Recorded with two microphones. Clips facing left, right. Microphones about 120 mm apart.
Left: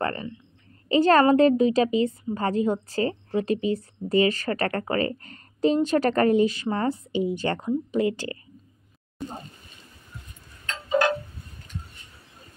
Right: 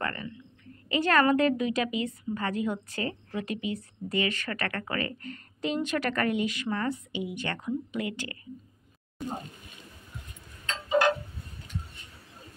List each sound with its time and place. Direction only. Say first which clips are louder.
0.0 s a woman's voice: left 6 dB; 30° left (ahead or behind)